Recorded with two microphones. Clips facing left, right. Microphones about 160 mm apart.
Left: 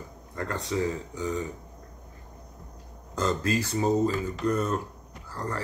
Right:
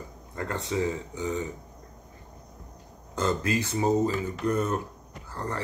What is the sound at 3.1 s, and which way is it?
Speech, 20° right (ahead or behind).